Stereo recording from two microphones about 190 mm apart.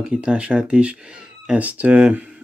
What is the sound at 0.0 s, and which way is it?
Speech, 5° right (ahead or behind).